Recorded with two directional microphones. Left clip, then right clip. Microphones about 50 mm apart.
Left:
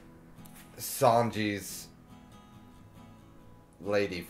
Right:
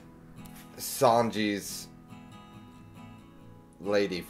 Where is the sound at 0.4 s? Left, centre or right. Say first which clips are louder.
Right 3 dB; centre.